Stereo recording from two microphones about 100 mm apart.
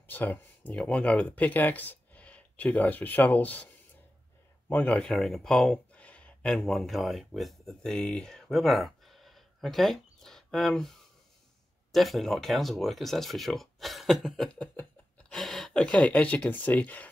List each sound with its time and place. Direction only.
0.0 s speech: 20° left (ahead or behind)
4.6 s speech: 15° left (ahead or behind)
5.1 s speech: 5° left (ahead or behind)